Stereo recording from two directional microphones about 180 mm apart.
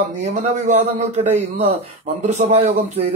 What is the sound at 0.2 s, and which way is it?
A man's voice, 45° right (ahead or behind).